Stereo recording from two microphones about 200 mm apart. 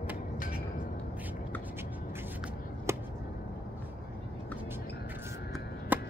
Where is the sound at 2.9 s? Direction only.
15° right (ahead or behind).